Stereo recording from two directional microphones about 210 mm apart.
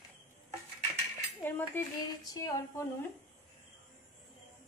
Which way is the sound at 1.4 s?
10° left (ahead or behind).